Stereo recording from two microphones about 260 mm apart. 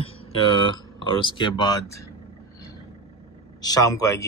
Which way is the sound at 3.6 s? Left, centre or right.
Centre.